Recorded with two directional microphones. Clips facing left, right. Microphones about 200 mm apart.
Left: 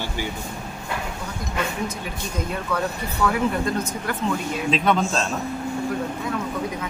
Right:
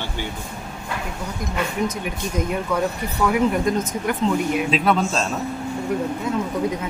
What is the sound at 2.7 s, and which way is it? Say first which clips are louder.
Speech: right 3 dB; 15° right (ahead or behind).